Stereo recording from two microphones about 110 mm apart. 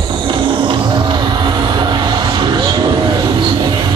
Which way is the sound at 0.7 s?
45° right (ahead or behind).